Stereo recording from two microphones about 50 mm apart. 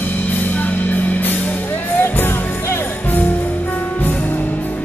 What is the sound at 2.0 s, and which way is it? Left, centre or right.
Music, left.